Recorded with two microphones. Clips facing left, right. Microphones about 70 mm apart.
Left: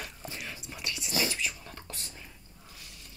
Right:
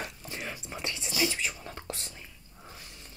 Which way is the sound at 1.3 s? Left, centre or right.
Right.